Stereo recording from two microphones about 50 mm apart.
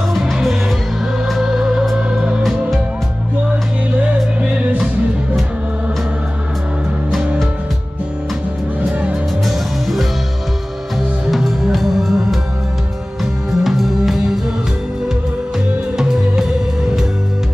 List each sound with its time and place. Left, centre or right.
0.2 s music: centre
9.5 s music: centre
11.2 s music: centre
16.0 s music: centre